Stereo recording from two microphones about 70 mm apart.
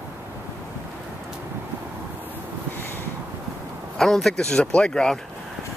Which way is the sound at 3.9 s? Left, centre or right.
Centre.